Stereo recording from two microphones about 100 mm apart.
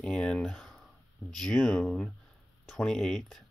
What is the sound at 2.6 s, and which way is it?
Speech, centre (ahead or behind).